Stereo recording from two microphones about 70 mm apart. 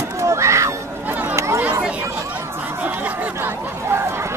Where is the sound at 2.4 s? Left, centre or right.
Right.